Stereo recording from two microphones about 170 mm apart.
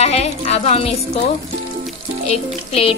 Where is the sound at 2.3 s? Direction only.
35° left (ahead or behind).